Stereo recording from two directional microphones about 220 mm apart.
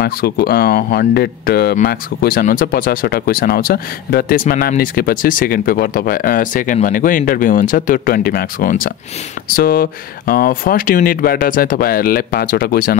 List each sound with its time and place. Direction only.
0.0 s speech: 45° left (ahead or behind)